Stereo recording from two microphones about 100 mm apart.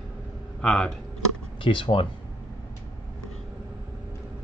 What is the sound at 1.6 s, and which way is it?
Speech, 60° left (ahead or behind).